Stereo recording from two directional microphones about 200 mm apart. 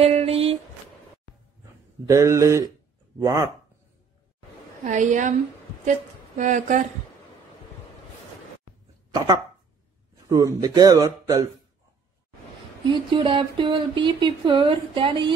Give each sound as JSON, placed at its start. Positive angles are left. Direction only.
{"t": 0.0, "sound": "a sound", "side_deg": -30}
{"t": 2.0, "sound": "speech", "side_deg": -15}
{"t": 4.8, "sound": "a woman's voice", "side_deg": -40}
{"t": 10.2, "sound": "speech", "side_deg": -15}
{"t": 12.9, "sound": "speech", "side_deg": -25}